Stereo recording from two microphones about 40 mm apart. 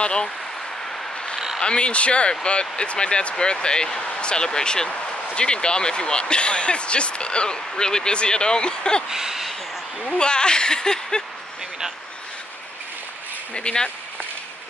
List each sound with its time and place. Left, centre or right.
0.0 s speech: left
1.6 s speech: left
9.1 s speech: centre
10.0 s speech: left
13.6 s speech: left